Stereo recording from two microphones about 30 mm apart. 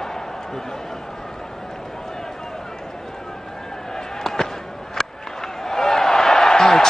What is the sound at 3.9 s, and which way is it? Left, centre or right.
Chop, centre.